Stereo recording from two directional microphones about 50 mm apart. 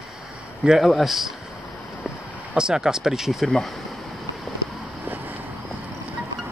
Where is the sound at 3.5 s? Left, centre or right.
Centre.